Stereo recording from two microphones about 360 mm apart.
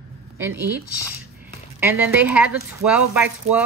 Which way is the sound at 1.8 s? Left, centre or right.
Centre.